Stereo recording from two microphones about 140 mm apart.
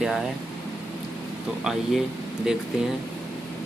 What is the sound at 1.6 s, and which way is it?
Speech, centre (ahead or behind).